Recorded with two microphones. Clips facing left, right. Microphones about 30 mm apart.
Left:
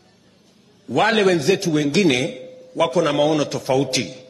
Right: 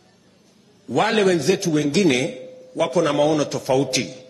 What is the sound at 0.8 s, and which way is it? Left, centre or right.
A man's voice, centre.